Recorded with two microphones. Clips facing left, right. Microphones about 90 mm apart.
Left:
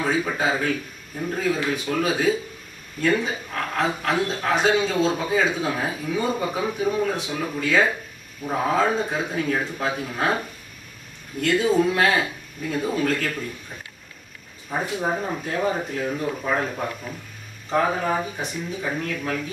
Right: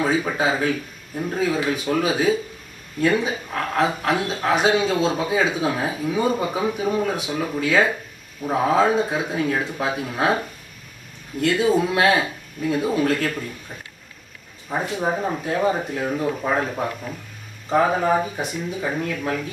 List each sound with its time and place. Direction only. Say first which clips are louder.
0.0 s speech: right 2 dB; 10° right (ahead or behind)
11.4 s speech: right 1 dB; 10° right (ahead or behind)
14.7 s speech: right 2 dB; 10° right (ahead or behind)